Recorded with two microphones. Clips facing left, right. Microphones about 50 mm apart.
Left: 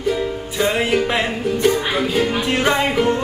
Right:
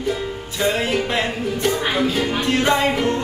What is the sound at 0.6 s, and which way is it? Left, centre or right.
Music, centre.